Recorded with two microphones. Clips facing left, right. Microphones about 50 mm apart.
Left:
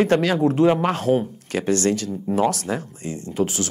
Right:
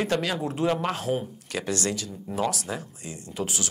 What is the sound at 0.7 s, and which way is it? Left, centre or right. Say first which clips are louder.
Speech: left 7 dB; left.